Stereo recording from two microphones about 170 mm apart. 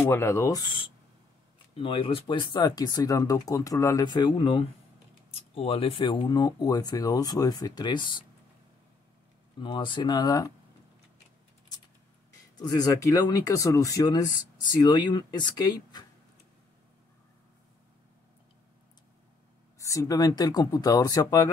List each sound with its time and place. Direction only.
0.0 s speech: 15° left (ahead or behind)
9.6 s speech: 30° left (ahead or behind)
12.5 s speech: 25° left (ahead or behind)
19.8 s speech: 20° left (ahead or behind)